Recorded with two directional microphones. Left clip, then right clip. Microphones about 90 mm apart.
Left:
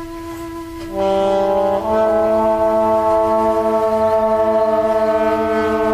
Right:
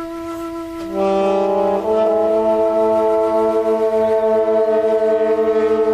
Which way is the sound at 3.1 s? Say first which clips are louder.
Left 1 dB; 20° right (ahead or behind).